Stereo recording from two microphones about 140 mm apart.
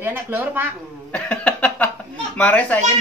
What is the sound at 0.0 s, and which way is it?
Speech, 15° right (ahead or behind).